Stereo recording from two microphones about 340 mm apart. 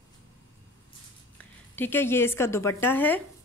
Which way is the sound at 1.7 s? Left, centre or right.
Centre.